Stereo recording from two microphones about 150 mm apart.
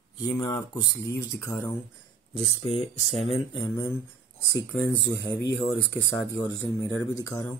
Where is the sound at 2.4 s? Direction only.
45° left (ahead or behind).